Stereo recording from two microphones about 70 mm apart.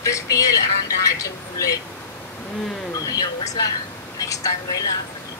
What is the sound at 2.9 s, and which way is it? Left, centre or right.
Speech, left.